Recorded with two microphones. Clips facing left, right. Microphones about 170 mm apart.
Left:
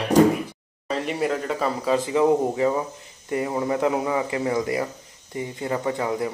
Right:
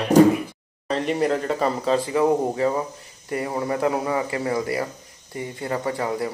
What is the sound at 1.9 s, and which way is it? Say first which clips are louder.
A man's voice: left 2 dB; 20° left (ahead or behind).